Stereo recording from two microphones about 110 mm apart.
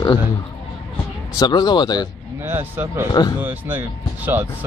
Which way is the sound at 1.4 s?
40° left (ahead or behind).